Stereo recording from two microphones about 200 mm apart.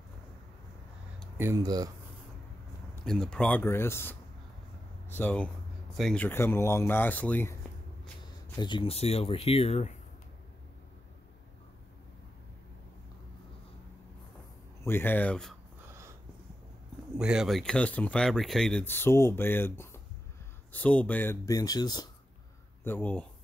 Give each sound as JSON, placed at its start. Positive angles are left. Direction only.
{"t": 1.4, "sound": "speech", "side_deg": -15}
{"t": 3.1, "sound": "speech", "side_deg": 5}
{"t": 8.2, "sound": "speech", "side_deg": 20}
{"t": 14.8, "sound": "speech", "side_deg": 10}
{"t": 17.2, "sound": "speech", "side_deg": -5}
{"t": 22.8, "sound": "speech", "side_deg": 10}